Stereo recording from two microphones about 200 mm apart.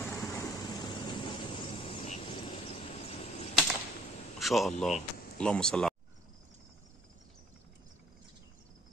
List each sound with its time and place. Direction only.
0.0 s vehicle: 15° left (ahead or behind); by 3.4 s 30° left (ahead or behind)
4.4 s a man's voice: centre (ahead or behind)